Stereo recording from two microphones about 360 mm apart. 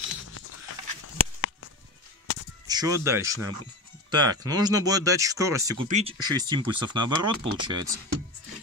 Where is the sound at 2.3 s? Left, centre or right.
Left.